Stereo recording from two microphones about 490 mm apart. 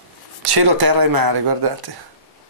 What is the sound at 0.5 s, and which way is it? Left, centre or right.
Speech, right.